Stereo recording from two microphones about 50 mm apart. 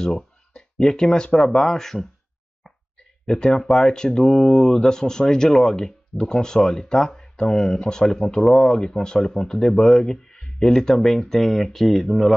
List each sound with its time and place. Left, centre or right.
0.0 s speech: centre
3.3 s speech: centre